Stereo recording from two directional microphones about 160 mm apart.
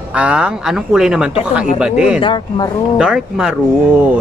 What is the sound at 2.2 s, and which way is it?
Speech, 30° left (ahead or behind).